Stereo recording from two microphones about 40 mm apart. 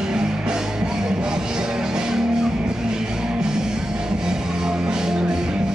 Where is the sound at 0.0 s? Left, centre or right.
Centre.